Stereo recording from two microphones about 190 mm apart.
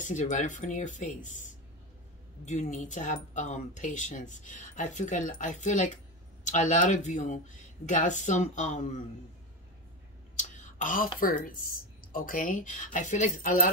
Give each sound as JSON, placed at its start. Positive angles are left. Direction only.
{"t": 0.0, "sound": "speech", "side_deg": 40}
{"t": 10.3, "sound": "a sound", "side_deg": 40}
{"t": 11.1, "sound": "speech", "side_deg": 45}